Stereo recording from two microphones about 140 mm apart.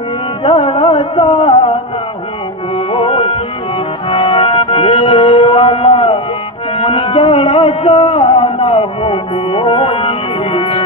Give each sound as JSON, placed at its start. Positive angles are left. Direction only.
{"t": 0.4, "sound": "music", "side_deg": 40}
{"t": 2.9, "sound": "music", "side_deg": 40}
{"t": 6.8, "sound": "a sound", "side_deg": 40}